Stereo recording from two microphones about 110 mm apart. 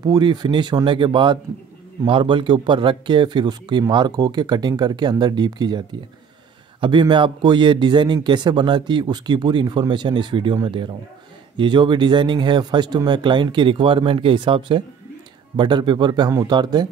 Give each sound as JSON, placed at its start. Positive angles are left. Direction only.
{"t": 0.0, "sound": "a man's voice", "side_deg": -40}